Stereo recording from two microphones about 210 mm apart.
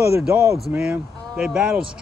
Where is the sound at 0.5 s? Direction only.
5° right (ahead or behind).